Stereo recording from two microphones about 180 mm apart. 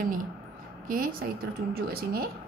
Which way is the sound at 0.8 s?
50° right (ahead or behind).